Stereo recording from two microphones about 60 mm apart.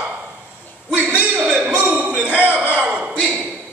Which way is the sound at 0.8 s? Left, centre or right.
Centre.